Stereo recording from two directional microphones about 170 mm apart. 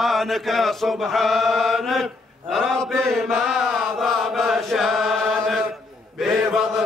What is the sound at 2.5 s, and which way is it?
Mantra, centre (ahead or behind).